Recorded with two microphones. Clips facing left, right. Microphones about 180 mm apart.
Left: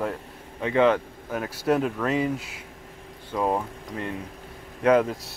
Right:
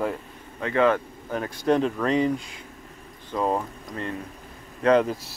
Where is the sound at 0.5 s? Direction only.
15° left (ahead or behind).